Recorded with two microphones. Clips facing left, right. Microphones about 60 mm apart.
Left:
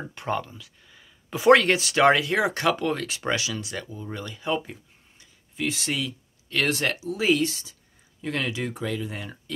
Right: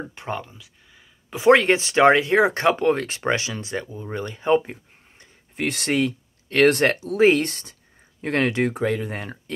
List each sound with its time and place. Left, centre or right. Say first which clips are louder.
0.1 s speech: left 2 dB; centre; by 9.4 s right